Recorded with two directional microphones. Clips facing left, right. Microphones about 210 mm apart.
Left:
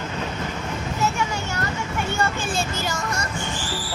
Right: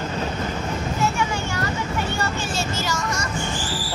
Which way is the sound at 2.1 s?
50° left (ahead or behind).